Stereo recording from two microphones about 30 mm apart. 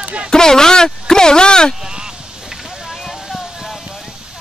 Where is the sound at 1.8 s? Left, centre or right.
Right.